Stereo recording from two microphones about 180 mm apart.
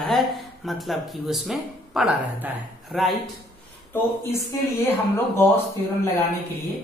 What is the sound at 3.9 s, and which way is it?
Speech, 10° left (ahead or behind).